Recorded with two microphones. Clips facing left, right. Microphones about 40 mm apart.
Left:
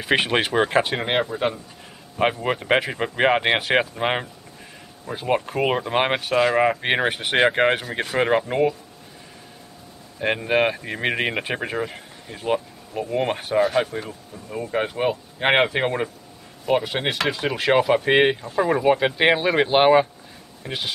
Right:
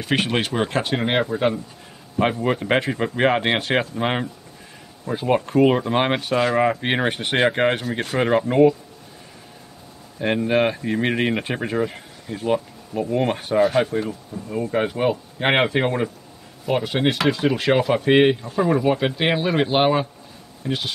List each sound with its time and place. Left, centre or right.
0.0 s speech: centre
2.4 s speech: centre
10.1 s speech: centre
20.6 s speech: left